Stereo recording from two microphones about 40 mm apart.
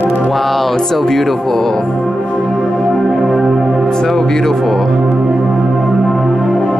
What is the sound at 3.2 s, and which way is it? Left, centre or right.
Music, centre.